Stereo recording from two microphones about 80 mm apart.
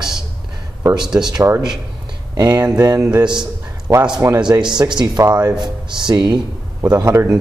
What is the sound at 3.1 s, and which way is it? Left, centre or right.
Speech, right.